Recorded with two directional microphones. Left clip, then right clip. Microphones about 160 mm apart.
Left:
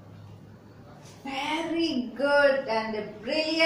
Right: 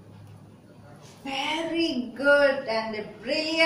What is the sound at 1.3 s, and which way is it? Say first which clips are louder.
Speech: right 1 dB; 5° left (ahead or behind).